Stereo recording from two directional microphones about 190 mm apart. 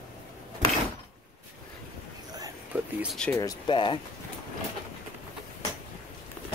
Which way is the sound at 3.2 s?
10° left (ahead or behind).